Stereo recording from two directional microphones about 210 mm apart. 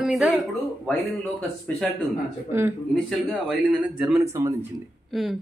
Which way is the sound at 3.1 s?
5° left (ahead or behind).